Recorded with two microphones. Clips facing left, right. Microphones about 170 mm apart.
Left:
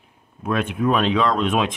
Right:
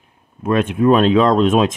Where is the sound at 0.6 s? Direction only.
45° right (ahead or behind).